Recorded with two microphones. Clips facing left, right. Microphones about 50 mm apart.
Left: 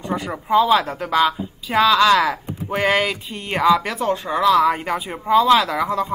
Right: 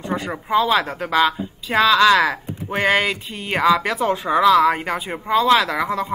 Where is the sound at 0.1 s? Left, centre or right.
Centre.